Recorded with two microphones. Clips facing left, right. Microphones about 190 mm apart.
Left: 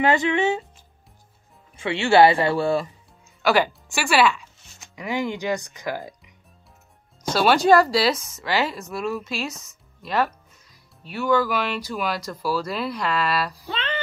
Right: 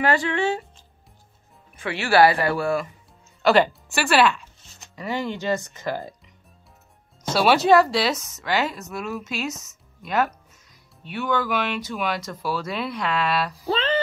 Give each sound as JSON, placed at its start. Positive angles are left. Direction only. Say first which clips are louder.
{"t": 0.0, "sound": "speech", "louder": "left 2 dB", "side_deg": 20}
{"t": 1.8, "sound": "speech", "louder": "left 2 dB", "side_deg": 25}
{"t": 3.4, "sound": "speech", "louder": "right 2 dB", "side_deg": 5}
{"t": 7.3, "sound": "speech", "louder": "even", "side_deg": 0}
{"t": 13.7, "sound": "music", "louder": "right 7 dB", "side_deg": -40}